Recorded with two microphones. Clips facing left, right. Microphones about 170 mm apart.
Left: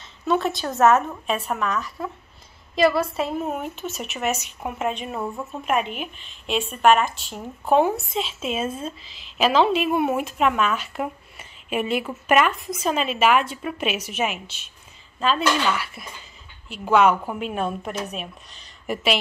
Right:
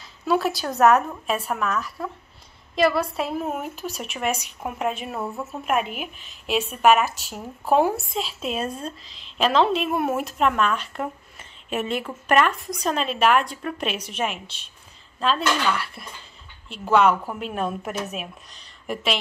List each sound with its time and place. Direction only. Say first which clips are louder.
0.2 s a woman's voice: even; centre (ahead or behind)